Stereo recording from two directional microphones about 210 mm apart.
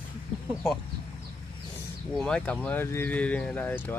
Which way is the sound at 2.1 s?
5° left (ahead or behind).